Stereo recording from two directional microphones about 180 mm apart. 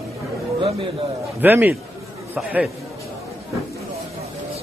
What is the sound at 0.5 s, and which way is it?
Chatter, 30° right (ahead or behind).